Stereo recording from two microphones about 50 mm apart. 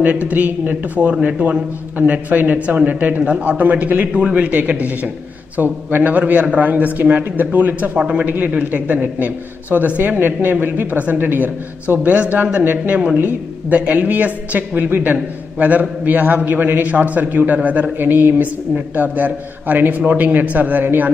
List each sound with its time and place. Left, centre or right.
0.0 s a man's voice: right
8.0 s a man's voice: right
17.9 s a man's voice: right